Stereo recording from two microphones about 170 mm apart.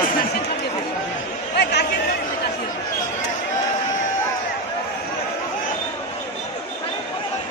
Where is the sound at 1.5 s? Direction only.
75° left (ahead or behind).